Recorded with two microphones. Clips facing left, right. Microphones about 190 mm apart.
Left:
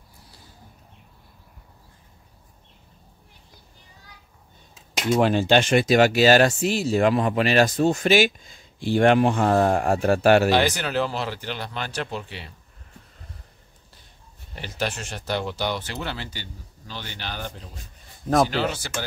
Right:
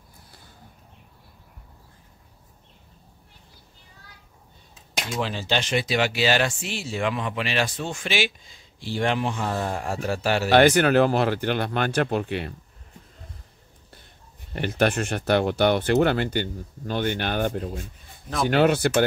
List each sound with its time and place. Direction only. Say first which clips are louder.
5.2 s speech: left 8 dB; 55° left (ahead or behind)
10.5 s speech: right 5 dB; 55° right (ahead or behind)
14.5 s speech: right 7 dB; 55° right (ahead or behind)